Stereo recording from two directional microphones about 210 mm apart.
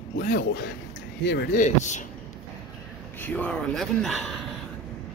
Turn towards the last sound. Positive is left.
turn(degrees=0)  # may be behind; listen again after turning